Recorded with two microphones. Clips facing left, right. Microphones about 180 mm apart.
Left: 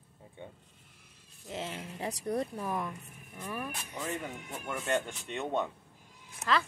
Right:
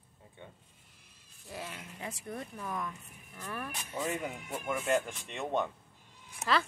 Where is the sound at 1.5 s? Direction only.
25° left (ahead or behind).